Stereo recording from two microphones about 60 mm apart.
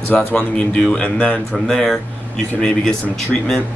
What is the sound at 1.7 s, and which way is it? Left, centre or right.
Speech, centre.